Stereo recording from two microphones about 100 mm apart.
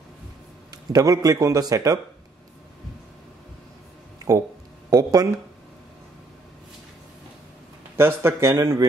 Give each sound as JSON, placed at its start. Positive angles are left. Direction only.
{"t": 0.7, "sound": "speech", "side_deg": -40}
{"t": 4.8, "sound": "speech", "side_deg": -40}
{"t": 7.9, "sound": "speech", "side_deg": -25}